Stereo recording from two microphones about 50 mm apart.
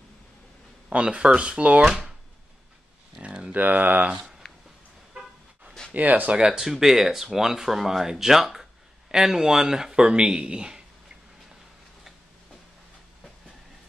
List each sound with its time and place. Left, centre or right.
0.8 s speech: right
3.2 s a sound: centre
3.5 s speech: right
5.9 s speech: right
6.3 s speech: centre